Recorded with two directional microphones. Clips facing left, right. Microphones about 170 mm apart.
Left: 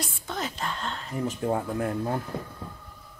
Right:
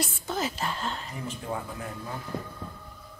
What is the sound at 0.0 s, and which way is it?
A woman's voice, 5° right (ahead or behind).